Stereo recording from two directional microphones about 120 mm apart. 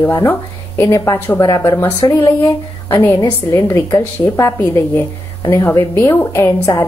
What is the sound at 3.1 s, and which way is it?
A woman's voice, 30° left (ahead or behind).